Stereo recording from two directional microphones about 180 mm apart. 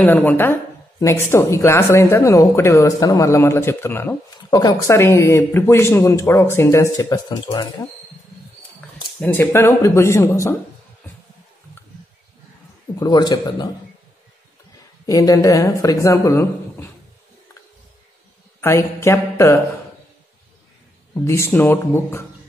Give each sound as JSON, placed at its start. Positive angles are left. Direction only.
{"t": 0.0, "sound": "a woman's voice", "side_deg": 10}
{"t": 9.2, "sound": "a woman's voice", "side_deg": 10}
{"t": 13.0, "sound": "a woman's voice", "side_deg": 20}
{"t": 15.0, "sound": "a woman's voice", "side_deg": 20}
{"t": 18.6, "sound": "speech", "side_deg": 15}
{"t": 21.1, "sound": "a woman's voice", "side_deg": 15}